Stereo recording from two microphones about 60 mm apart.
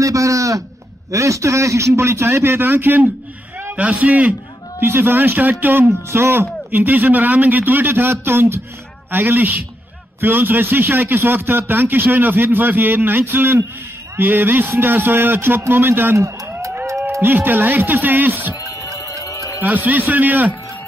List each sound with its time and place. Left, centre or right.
0.0 s a man's voice: right
3.7 s speech: right
6.0 s a man's voice: right
6.7 s speech: right
16.2 s a sound: right
17.2 s speech: right
19.6 s speech: right